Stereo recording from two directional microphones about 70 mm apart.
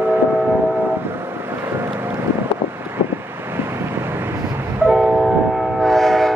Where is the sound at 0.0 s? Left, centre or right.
Right.